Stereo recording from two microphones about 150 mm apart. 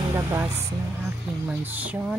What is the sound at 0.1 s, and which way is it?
Speech, 20° right (ahead or behind).